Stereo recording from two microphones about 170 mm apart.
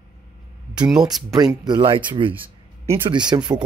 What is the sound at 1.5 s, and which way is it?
Speech, 25° right (ahead or behind).